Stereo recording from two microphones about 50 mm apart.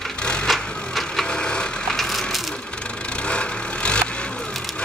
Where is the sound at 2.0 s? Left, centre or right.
Centre.